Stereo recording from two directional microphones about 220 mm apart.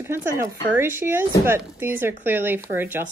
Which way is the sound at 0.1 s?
10° right (ahead or behind).